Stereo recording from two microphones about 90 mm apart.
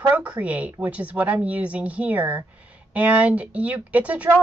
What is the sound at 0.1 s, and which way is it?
A woman's voice, 15° right (ahead or behind).